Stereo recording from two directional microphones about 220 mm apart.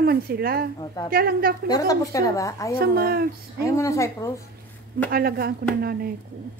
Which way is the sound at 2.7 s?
45° right (ahead or behind).